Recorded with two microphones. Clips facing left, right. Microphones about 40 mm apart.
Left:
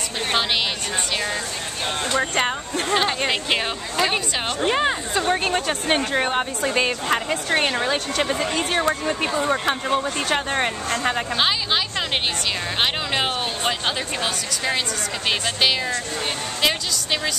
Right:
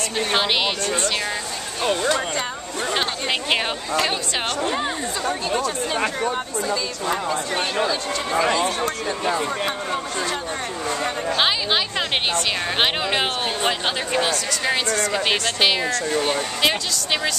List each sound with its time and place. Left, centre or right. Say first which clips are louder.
2.9 s speech: left 3 dB; centre
4.1 s speech: even; left
5.3 s speech: left 2 dB; left
8.3 s speech: right 3 dB; right
9.5 s speech: left 3 dB; left
11.3 s speech: right 5 dB; centre
16.6 s speech: left 1 dB; centre